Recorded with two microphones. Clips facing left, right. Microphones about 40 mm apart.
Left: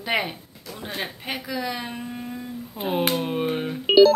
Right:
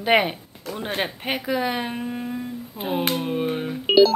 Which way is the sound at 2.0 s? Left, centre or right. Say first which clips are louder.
Right 4 dB; centre.